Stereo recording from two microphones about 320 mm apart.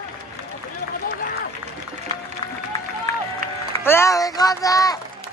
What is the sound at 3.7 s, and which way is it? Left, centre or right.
Speech, centre.